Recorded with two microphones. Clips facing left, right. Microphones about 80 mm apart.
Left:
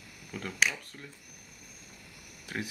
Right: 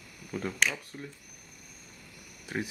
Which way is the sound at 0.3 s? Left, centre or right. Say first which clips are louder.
Right 5 dB; centre.